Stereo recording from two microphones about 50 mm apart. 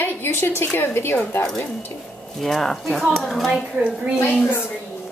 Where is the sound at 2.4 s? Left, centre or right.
Centre.